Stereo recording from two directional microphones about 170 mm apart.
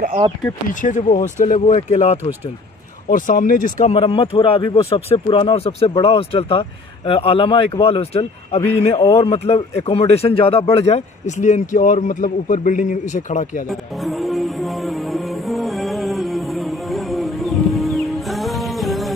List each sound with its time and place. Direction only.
0.7 s speech: 50° left (ahead or behind)
3.1 s speech: 50° left (ahead or behind)
13.7 s music: centre (ahead or behind)